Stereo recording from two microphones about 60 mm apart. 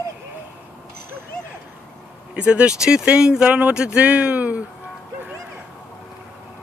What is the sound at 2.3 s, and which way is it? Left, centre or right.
Speech, centre.